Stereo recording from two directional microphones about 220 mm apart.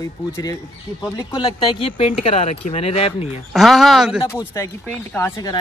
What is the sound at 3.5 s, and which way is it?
Speech, centre (ahead or behind).